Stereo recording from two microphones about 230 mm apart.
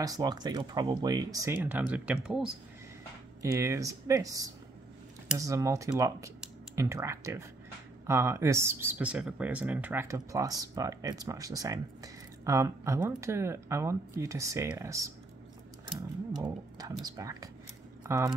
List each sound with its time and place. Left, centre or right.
0.0 s speech: centre
3.5 s speech: centre
16.4 s speech: centre